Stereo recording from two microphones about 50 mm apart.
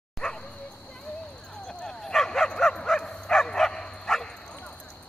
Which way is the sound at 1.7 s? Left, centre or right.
Centre.